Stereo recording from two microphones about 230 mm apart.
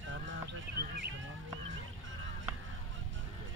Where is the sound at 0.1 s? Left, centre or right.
Right.